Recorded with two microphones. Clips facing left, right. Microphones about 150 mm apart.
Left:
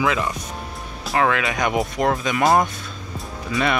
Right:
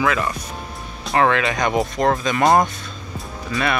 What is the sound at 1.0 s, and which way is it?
Speech, 5° left (ahead or behind).